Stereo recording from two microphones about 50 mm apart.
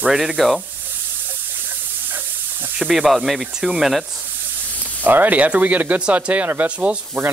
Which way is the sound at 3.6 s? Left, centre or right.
Centre.